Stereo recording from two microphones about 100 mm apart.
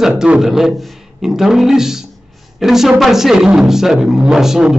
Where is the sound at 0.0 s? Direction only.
5° right (ahead or behind).